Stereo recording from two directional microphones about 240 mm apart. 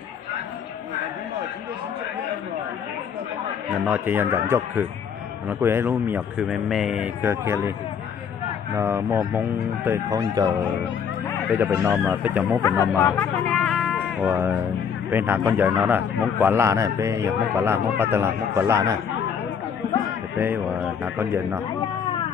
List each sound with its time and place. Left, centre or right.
3.8 s a man's voice: centre
8.7 s a man's voice: centre
11.5 s a man's voice: centre
13.5 s music: centre
15.0 s a man's voice: centre
20.3 s a man's voice: centre